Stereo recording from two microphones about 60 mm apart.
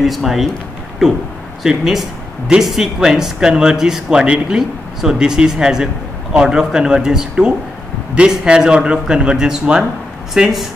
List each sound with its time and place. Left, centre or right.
0.0 s speech: centre
1.6 s speech: centre